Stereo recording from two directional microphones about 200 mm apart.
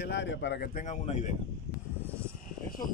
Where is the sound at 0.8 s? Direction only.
35° left (ahead or behind).